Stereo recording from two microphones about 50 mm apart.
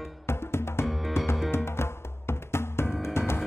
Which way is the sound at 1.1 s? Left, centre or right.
Left.